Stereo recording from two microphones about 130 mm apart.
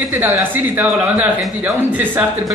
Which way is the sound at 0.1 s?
15° right (ahead or behind).